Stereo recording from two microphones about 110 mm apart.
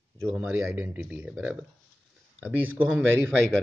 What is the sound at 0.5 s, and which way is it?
Speech, 20° right (ahead or behind).